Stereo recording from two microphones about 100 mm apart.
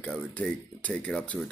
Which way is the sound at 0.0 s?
10° left (ahead or behind).